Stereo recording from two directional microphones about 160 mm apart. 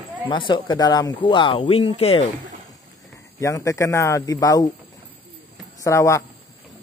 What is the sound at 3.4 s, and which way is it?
Speech, 20° left (ahead or behind).